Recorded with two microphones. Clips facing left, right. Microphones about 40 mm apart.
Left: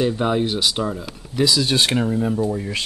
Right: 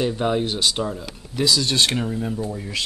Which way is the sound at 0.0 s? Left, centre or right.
Centre.